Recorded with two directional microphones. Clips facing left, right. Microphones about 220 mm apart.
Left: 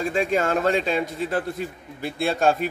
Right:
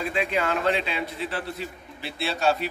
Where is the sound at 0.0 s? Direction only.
45° left (ahead or behind).